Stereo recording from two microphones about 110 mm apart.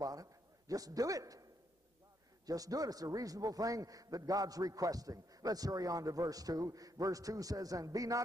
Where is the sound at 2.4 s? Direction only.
35° right (ahead or behind).